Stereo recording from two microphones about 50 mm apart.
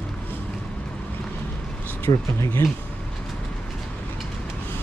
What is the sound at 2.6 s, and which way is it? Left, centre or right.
Speech, left.